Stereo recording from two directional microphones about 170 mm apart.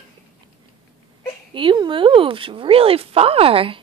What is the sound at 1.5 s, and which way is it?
Speech, 30° right (ahead or behind).